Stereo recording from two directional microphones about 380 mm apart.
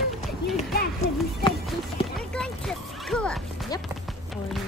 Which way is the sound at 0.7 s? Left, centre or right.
Centre.